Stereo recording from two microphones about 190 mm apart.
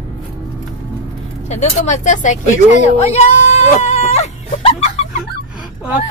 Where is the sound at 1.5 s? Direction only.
35° left (ahead or behind).